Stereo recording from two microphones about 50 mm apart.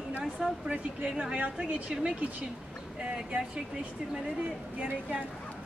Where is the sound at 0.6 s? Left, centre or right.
Centre.